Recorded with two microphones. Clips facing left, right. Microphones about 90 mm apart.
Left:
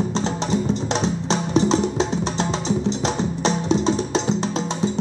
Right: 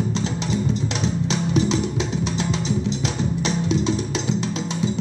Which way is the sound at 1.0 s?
35° left (ahead or behind).